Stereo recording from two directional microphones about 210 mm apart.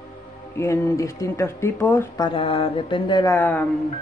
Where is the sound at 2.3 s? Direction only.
25° left (ahead or behind).